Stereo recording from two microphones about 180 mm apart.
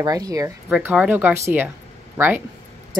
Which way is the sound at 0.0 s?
20° right (ahead or behind).